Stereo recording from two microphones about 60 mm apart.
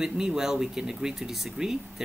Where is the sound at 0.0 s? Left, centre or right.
Centre.